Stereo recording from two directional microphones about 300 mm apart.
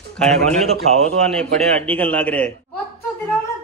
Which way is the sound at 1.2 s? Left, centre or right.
Centre.